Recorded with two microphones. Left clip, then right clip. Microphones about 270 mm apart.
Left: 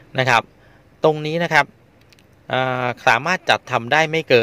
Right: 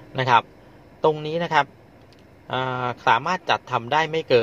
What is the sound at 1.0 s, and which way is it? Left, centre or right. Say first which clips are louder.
A man's voice: left 4 dB; left.